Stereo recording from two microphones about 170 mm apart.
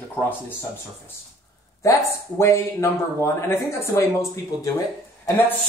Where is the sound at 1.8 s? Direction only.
20° left (ahead or behind).